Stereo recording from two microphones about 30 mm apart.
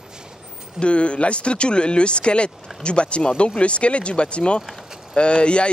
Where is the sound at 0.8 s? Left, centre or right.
Left.